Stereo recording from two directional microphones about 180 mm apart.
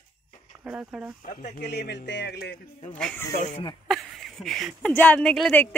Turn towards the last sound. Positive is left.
turn(degrees=10)  # may be behind; listen again after turning